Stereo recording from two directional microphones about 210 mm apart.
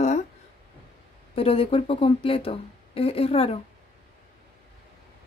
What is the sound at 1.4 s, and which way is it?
Speech, 25° left (ahead or behind).